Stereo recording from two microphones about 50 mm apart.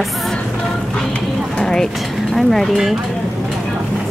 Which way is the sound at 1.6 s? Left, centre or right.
Centre.